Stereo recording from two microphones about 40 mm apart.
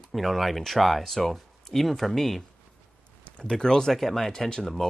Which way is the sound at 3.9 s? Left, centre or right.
Centre.